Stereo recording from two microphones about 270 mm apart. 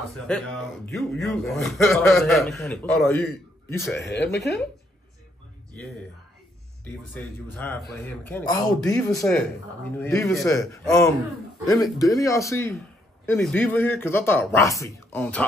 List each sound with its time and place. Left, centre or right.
0.3 s a man's voice: centre
4.1 s speech: left
6.8 s a man's voice: centre
9.1 s a man's voice: centre